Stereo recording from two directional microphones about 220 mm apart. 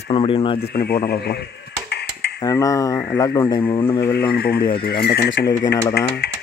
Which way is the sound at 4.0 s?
45° left (ahead or behind).